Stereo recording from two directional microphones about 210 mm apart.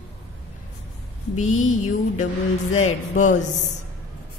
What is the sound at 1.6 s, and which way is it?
A woman's voice, 35° left (ahead or behind).